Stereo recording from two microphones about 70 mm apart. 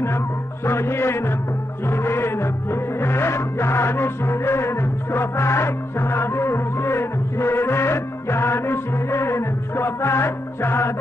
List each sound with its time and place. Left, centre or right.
0.7 s music: left